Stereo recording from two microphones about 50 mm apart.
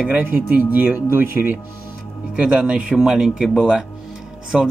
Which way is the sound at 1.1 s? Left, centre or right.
Right.